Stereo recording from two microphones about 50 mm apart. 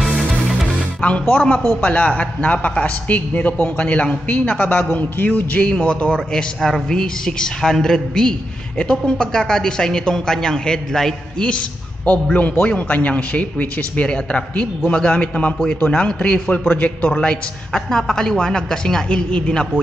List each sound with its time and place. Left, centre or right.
0.7 s music: left
1.8 s a man's voice: left; by 11.4 s centre
11.4 s a man's voice: left
17.1 s a man's voice: centre
19.0 s speech: left